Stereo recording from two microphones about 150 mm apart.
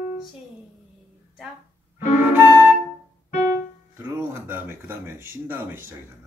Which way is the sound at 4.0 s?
15° right (ahead or behind).